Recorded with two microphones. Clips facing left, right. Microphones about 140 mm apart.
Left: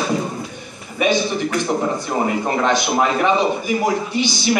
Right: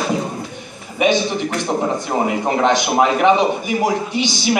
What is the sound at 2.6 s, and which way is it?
A man's voice, 20° right (ahead or behind).